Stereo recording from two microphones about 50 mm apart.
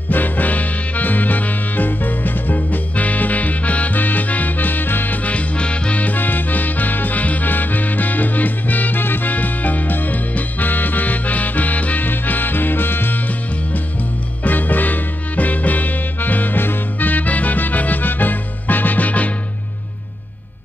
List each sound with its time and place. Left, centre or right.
0.1 s music: left
14.4 s music: left